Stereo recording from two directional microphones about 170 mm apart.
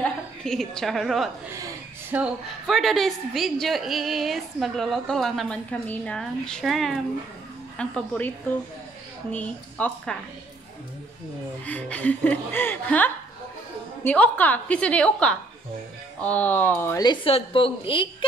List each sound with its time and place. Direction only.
0.0 s a woman's voice: 5° left (ahead or behind)
2.1 s speech: 10° right (ahead or behind)
2.6 s a woman's voice: centre (ahead or behind)
9.3 s a woman's voice: 10° left (ahead or behind)
11.6 s a woman's voice: 10° left (ahead or behind)
17.0 s a woman's voice: 30° left (ahead or behind)